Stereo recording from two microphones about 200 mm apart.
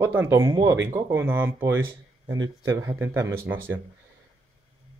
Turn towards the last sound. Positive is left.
turn(degrees=-10)  # may be behind; listen again after turning